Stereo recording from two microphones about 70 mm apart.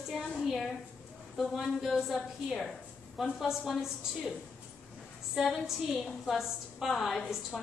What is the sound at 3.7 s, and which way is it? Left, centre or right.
Speech, centre.